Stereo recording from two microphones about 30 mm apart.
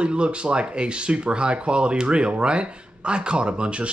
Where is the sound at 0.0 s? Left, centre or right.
Right.